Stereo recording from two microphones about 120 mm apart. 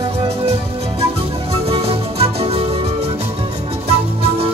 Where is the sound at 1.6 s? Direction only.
55° right (ahead or behind).